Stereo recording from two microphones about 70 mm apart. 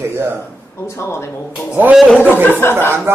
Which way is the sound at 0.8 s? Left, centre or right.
Left.